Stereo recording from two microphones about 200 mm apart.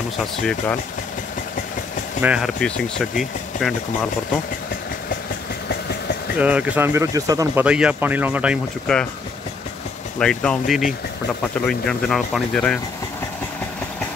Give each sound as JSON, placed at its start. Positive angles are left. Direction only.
{"t": 0.2, "sound": "speech", "side_deg": 5}
{"t": 2.2, "sound": "speech", "side_deg": 0}
{"t": 5.7, "sound": "engine", "side_deg": 50}
{"t": 6.3, "sound": "speech", "side_deg": -5}
{"t": 7.6, "sound": "speech", "side_deg": -5}
{"t": 10.1, "sound": "speech", "side_deg": 5}